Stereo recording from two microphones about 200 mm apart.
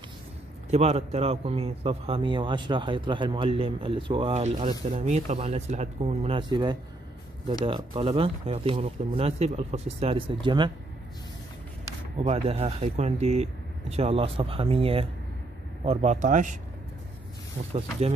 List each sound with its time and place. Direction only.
0.7 s a man's voice: 30° right (ahead or behind)
12.2 s a man's voice: 30° right (ahead or behind)